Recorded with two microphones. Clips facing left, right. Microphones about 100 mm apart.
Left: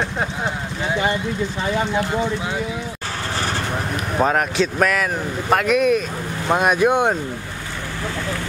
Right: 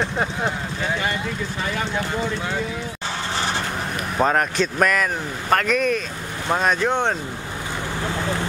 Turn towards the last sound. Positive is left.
turn(degrees=10)  # may be behind; listen again after turning